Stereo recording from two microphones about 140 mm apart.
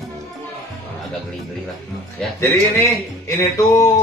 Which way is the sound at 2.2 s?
5° left (ahead or behind).